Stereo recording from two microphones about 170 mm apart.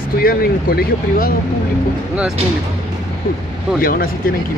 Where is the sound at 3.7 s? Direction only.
60° left (ahead or behind).